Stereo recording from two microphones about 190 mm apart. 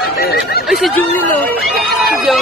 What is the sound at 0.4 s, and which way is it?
Snicker, 60° left (ahead or behind).